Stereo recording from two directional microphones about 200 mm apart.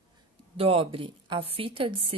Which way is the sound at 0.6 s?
30° right (ahead or behind).